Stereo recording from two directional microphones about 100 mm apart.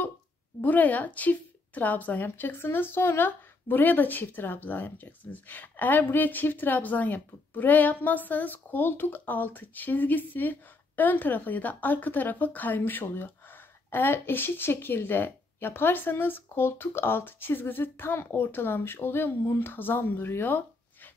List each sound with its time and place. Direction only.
0.6 s a woman's voice: 15° left (ahead or behind)